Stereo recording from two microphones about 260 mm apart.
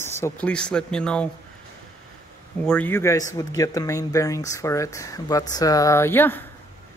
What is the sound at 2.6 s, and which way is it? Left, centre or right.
Speech, centre.